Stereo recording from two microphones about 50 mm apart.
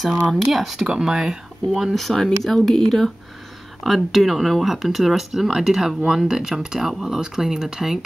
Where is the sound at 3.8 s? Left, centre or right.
Centre.